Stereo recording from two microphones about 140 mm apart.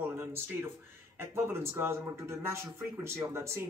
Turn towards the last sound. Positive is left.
turn(degrees=-20)  # may be behind; listen again after turning